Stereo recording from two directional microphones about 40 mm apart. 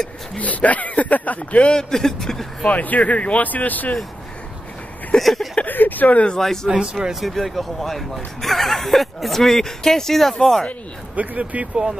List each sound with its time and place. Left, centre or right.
0.4 s speech: left
1.7 s speech: centre
2.7 s speech: left
5.2 s speech: centre
5.7 s speech: left
6.3 s speech: centre
6.7 s speech: centre
7.2 s speech: centre
11.1 s speech: right